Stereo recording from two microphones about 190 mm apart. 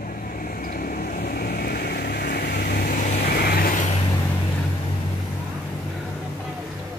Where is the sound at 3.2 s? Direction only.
55° left (ahead or behind).